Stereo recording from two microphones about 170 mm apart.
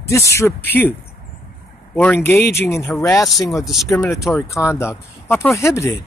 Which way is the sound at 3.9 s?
20° left (ahead or behind).